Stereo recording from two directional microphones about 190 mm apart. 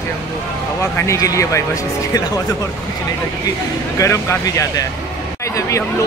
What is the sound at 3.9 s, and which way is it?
Speech, 15° left (ahead or behind).